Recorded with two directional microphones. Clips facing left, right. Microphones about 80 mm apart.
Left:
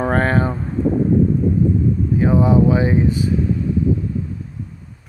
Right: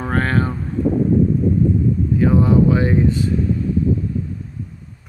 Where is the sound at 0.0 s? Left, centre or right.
Left.